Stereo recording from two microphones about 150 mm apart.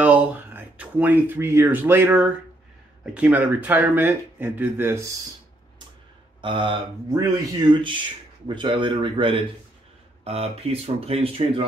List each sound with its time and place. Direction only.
0.0 s speech: 10° right (ahead or behind)
6.4 s speech: 35° right (ahead or behind)